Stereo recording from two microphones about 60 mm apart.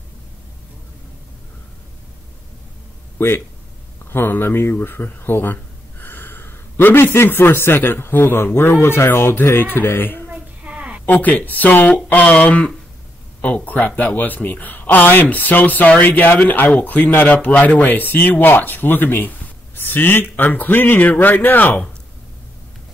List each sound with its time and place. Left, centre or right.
3.2 s speech: left
10.3 s a sound: right
11.1 s speech: left